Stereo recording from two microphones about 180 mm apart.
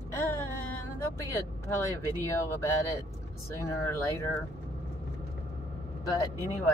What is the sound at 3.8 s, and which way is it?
Speech, 15° left (ahead or behind).